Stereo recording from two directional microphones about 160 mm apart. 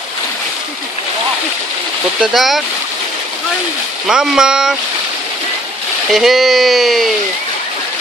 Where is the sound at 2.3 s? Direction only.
Centre (ahead or behind).